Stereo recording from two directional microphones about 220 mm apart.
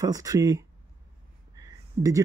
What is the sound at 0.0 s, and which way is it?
Speech, 15° right (ahead or behind).